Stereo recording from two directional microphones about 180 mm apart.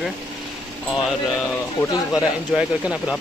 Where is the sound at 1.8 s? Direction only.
20° left (ahead or behind).